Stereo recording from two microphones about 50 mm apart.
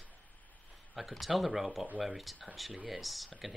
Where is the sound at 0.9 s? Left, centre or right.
Centre.